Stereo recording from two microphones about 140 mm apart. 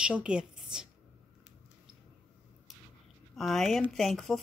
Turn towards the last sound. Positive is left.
turn(degrees=0)  # may be behind; listen again after turning